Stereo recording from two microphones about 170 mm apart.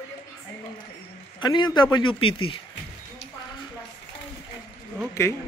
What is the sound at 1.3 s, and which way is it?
Speech, 25° left (ahead or behind).